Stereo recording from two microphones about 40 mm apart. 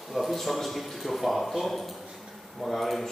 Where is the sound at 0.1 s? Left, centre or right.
Centre.